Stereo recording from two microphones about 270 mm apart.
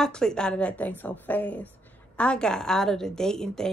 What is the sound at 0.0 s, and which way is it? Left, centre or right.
A woman's voice, centre.